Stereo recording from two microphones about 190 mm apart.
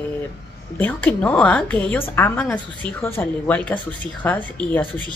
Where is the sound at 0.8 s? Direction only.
10° left (ahead or behind).